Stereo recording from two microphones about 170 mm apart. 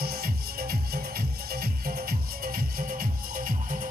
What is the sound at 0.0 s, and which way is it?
Music, 60° right (ahead or behind).